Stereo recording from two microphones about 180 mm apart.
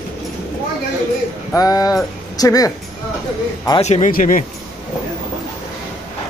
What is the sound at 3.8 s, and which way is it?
Speech, 40° left (ahead or behind).